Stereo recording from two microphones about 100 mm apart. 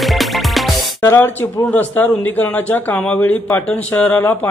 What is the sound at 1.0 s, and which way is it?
A man's voice, 20° left (ahead or behind).